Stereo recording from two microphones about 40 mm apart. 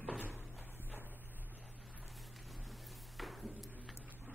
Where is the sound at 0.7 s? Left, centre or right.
Right.